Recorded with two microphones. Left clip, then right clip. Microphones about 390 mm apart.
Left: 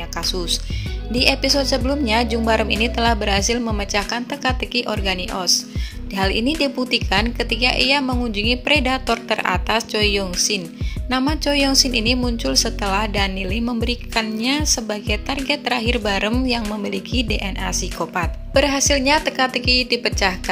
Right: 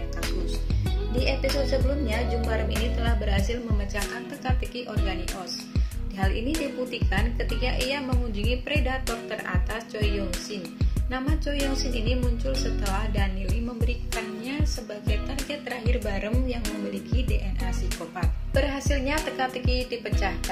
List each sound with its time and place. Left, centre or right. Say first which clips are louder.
1.1 s a woman's voice: left 10 dB; left